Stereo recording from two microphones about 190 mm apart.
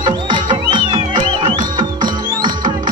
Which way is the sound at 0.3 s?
25° right (ahead or behind).